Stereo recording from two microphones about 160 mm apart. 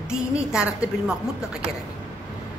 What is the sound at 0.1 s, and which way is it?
A woman's voice, 5° right (ahead or behind).